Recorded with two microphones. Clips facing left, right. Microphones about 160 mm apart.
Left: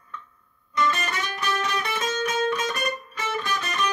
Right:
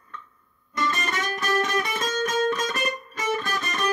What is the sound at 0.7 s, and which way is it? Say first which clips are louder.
Music: left 2 dB; 45° right (ahead or behind).